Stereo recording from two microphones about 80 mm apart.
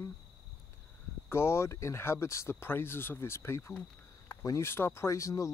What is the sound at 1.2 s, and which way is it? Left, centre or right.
Speech, left.